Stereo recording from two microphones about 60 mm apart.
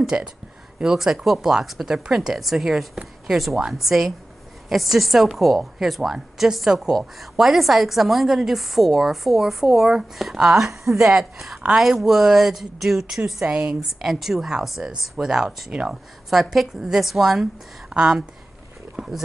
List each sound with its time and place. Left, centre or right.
0.0 s a woman's voice: centre
13.5 s a woman's voice: right
13.7 s a woman's voice: centre